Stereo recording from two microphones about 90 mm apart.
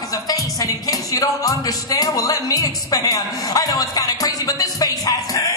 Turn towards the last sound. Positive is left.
turn(degrees=45)  # may be behind; listen again after turning